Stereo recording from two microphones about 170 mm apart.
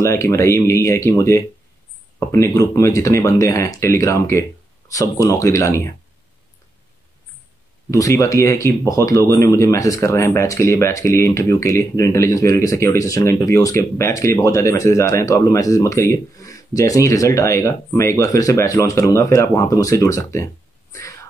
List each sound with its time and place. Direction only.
0.0 s speech: 15° left (ahead or behind)
7.9 s speech: 20° left (ahead or behind)